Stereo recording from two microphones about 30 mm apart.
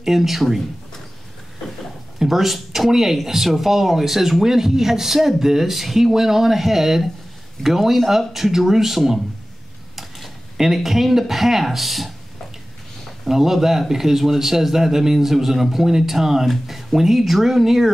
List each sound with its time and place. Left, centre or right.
0.0 s speech: centre
2.1 s speech: centre
13.3 s speech: centre